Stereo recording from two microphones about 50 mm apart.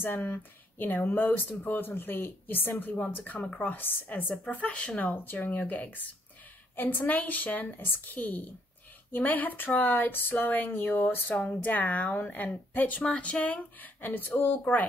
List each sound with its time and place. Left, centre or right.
0.0 s speech: left
3.3 s speech: left
3.7 s speech: left
11.3 s speech: left